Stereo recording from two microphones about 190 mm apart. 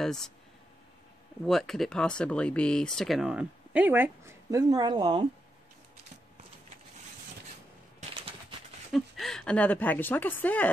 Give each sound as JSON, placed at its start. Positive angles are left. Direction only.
{"t": 0.0, "sound": "speech", "side_deg": 0}
{"t": 1.4, "sound": "speech", "side_deg": 0}
{"t": 8.0, "sound": "bird", "side_deg": -30}
{"t": 8.9, "sound": "speech", "side_deg": 0}